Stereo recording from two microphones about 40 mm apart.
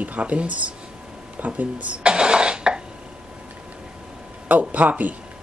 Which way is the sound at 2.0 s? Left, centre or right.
Right.